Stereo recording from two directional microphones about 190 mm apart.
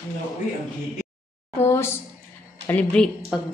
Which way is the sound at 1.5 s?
10° left (ahead or behind).